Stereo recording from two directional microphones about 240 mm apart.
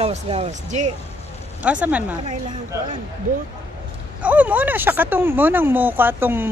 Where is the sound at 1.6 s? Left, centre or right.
Centre.